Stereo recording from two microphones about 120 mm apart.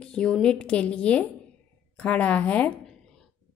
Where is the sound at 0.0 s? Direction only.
5° left (ahead or behind).